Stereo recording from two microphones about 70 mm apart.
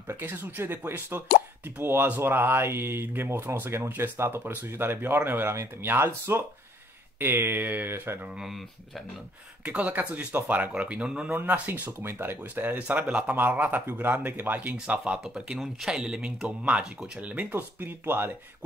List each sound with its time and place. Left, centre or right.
0.2 s speech: right
8.4 s speech: centre
9.7 s speech: right
11.3 s speech: right
15.2 s speech: centre; by 18.3 s right